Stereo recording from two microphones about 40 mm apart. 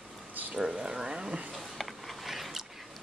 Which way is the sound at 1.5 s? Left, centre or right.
Centre.